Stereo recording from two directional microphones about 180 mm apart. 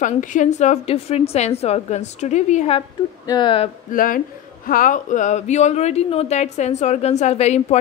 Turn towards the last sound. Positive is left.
turn(degrees=35)  # may be behind; listen again after turning